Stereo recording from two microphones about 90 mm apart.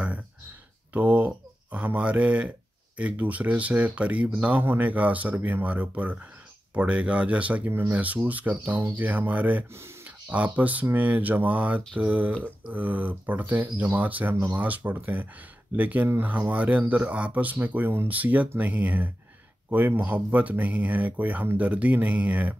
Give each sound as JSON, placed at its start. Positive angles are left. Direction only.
{"t": 0.9, "sound": "speech", "side_deg": -15}